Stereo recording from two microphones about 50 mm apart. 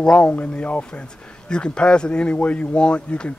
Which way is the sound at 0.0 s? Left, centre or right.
Centre.